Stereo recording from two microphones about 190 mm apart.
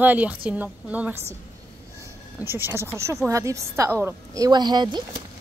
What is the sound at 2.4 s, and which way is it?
Speech, 10° right (ahead or behind).